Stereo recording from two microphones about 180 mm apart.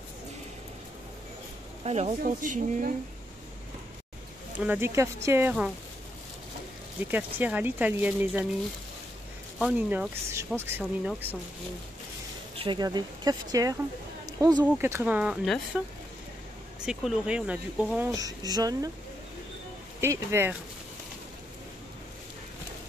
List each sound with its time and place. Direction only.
1.9 s speech: 35° right (ahead or behind)
4.6 s speech: 10° right (ahead or behind)
7.1 s speech: 10° right (ahead or behind)
9.6 s speech: 5° right (ahead or behind)
12.5 s speech: 25° right (ahead or behind); by 15.8 s centre (ahead or behind)
16.8 s speech: 5° right (ahead or behind)
18.1 s speech: 20° right (ahead or behind)
20.0 s speech: 15° right (ahead or behind)